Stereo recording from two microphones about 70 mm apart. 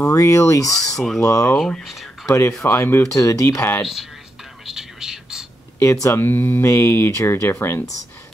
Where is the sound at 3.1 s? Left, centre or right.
Left.